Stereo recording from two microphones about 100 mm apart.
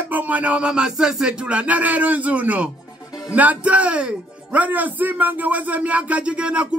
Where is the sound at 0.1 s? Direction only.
15° right (ahead or behind).